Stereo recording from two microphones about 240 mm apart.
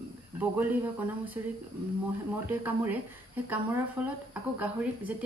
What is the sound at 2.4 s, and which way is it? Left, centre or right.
Speech, centre.